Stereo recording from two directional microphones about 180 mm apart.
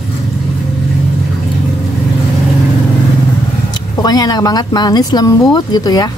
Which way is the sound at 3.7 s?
20° left (ahead or behind).